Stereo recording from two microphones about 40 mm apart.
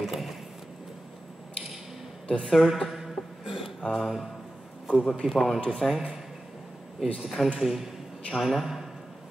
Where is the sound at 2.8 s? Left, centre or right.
Centre.